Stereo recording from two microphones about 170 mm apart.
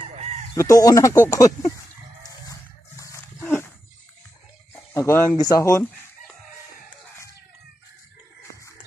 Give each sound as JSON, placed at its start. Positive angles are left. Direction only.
{"t": 0.1, "sound": "fowl", "side_deg": -40}
{"t": 0.6, "sound": "speech", "side_deg": 20}
{"t": 3.0, "sound": "dog", "side_deg": 15}
{"t": 4.9, "sound": "speech", "side_deg": 15}